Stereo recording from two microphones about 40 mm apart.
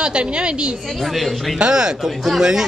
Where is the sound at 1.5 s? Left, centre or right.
Right.